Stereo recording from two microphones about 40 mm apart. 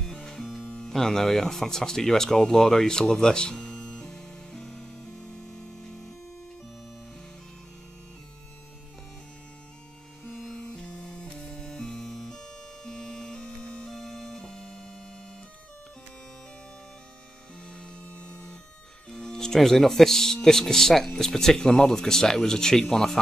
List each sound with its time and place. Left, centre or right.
0.1 s music: centre
0.4 s music: centre
0.7 s speech: centre
5.3 s music: centre
10.7 s music: left
11.1 s music: centre
13.8 s music: centre
17.6 s music: left
19.0 s music: centre
20.4 s speech: centre